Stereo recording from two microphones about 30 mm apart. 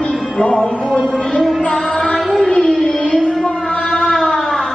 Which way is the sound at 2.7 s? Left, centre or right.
Centre.